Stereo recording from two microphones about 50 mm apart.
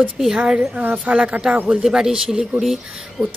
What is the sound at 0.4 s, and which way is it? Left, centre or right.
Speech, centre.